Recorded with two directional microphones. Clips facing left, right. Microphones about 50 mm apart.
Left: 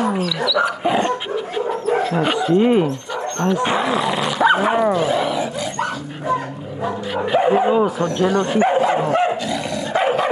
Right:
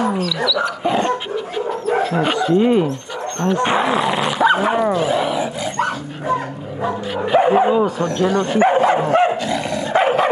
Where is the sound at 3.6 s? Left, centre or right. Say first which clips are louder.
Right 2 dB; right.